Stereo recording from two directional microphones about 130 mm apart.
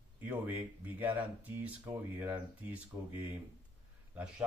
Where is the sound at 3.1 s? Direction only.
15° right (ahead or behind).